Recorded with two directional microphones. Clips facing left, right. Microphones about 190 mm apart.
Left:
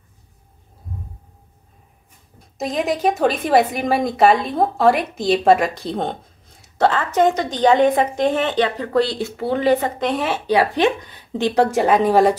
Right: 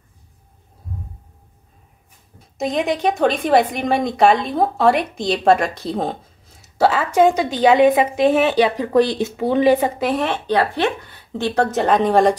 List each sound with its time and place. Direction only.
2.3 s a woman's voice: centre (ahead or behind)